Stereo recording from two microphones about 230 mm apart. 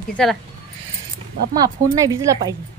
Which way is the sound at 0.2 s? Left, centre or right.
Centre.